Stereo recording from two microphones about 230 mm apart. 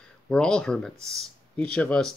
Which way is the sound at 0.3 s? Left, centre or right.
Centre.